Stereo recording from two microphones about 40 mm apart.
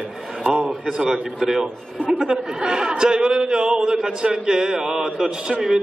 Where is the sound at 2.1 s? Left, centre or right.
Centre.